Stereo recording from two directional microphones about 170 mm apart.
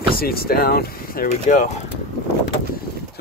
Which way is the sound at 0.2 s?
65° left (ahead or behind).